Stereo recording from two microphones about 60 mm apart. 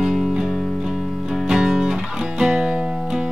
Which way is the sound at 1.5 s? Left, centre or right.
Centre.